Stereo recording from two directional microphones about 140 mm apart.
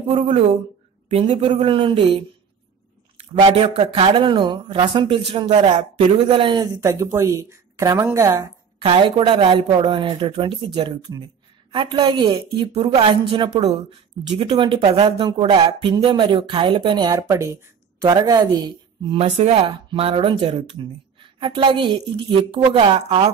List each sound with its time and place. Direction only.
0.1 s speech: 45° right (ahead or behind)
3.4 s speech: 45° right (ahead or behind)
6.8 s a woman's voice: 20° right (ahead or behind)
8.7 s a woman's voice: 35° right (ahead or behind)
19.2 s speech: 50° right (ahead or behind)